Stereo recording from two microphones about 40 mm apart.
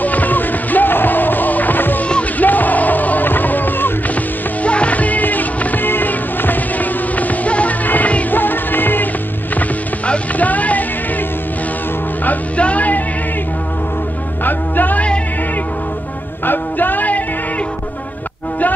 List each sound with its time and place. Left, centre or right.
0.0 s music: left
4.6 s music: left
5.9 s music: left
8.3 s music: left
10.0 s music: left
10.5 s music: left
12.5 s music: left
14.4 s music: left
16.4 s music: left